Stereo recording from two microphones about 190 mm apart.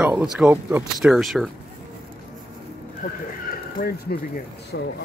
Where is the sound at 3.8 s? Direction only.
50° left (ahead or behind).